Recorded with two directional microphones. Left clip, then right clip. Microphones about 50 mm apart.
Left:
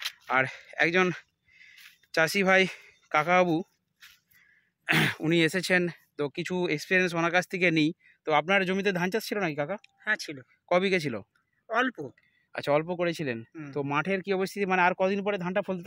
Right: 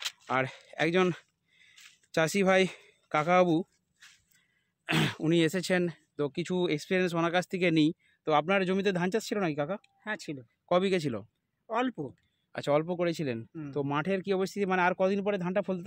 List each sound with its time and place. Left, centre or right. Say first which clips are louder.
0.4 s speech: left 4 dB; centre
0.8 s a sound: left 2 dB; right
2.1 s speech: left 3 dB; right
4.0 s a sound: left 3 dB; centre
4.8 s speech: left 4 dB; left
6.3 s speech: left 1 dB; centre
8.2 s speech: left 2 dB; centre
10.1 s speech: left 4 dB; right
10.7 s speech: left 2 dB; centre
11.7 s speech: left 4 dB; right
12.5 s speech: left 2 dB; left
12.8 s speech: left 1 dB; left